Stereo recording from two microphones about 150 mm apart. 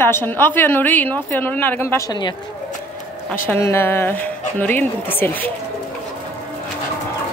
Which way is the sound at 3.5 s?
15° left (ahead or behind).